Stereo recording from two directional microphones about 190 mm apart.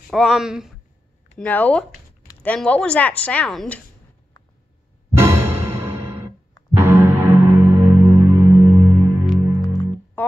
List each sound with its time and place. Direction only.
0.1 s speech: centre (ahead or behind)
1.4 s a woman's voice: 10° left (ahead or behind)
5.1 s music: 15° right (ahead or behind)
10.2 s music: 10° left (ahead or behind)